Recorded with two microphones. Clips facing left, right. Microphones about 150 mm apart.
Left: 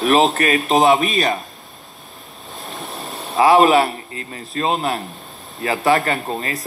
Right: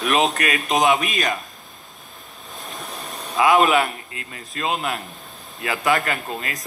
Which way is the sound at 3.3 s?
35° left (ahead or behind).